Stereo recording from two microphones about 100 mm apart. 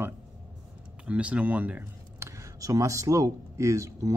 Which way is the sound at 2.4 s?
35° right (ahead or behind).